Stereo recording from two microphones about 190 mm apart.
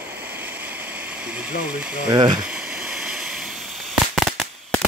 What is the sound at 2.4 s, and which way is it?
Fireworks, 5° right (ahead or behind).